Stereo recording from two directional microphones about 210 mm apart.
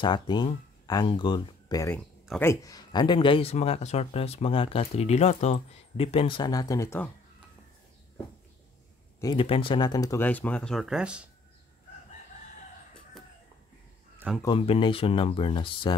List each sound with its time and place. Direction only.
0.0 s speech: 20° left (ahead or behind)
9.2 s speech: 20° left (ahead or behind); by 11.2 s 5° right (ahead or behind)
14.4 s speech: 20° left (ahead or behind)